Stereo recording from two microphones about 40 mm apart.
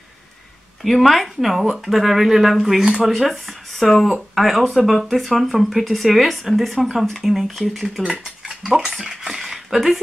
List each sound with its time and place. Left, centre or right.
0.8 s speech: centre
3.1 s speech: centre
9.0 s speech: centre
9.4 s a sound: centre